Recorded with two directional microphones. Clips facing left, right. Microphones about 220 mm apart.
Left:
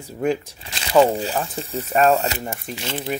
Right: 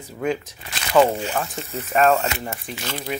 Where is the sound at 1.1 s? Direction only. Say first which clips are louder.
Left 2 dB; 35° left (ahead or behind).